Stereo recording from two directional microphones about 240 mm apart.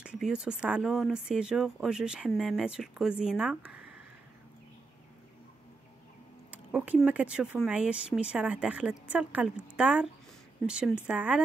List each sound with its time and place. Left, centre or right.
0.0 s speech: centre
6.5 s speech: centre